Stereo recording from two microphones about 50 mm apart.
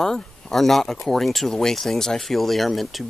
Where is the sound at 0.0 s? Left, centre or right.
Centre.